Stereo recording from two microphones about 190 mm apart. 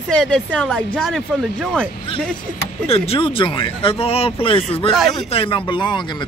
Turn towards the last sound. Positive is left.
turn(degrees=25)  # may be behind; listen again after turning